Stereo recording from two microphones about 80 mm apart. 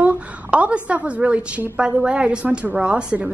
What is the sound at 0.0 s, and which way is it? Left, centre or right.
A woman's voice, centre.